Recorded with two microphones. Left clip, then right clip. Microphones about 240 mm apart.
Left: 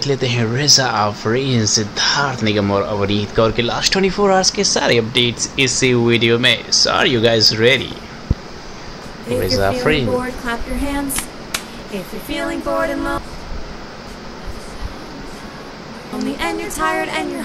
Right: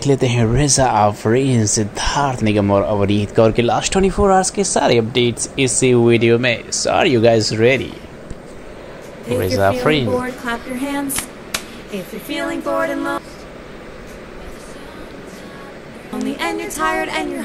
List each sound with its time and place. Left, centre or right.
0.0 s speech: right
9.3 s speech: centre
16.2 s speech: centre